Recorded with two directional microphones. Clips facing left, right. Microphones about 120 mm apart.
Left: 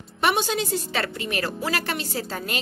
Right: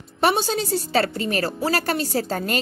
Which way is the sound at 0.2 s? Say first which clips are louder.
Right 2 dB; 35° right (ahead or behind).